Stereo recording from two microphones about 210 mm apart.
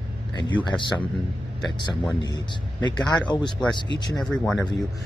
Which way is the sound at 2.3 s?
20° left (ahead or behind).